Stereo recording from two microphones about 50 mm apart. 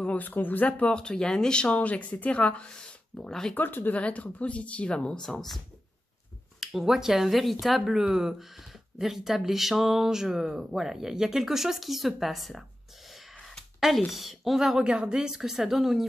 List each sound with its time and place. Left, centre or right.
0.0 s speech: left
0.9 s speech: centre
3.2 s speech: centre
3.5 s speech: left
3.9 s speech: left
6.6 s speech: centre
13.7 s a woman's voice: centre
14.8 s speech: centre